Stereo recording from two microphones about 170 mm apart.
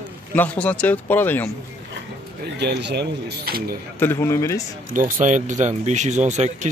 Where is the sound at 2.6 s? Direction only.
80° right; by 3.8 s 60° right (ahead or behind).